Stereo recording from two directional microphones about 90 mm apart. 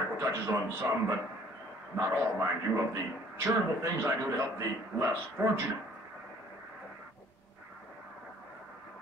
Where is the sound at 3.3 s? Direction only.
25° right (ahead or behind).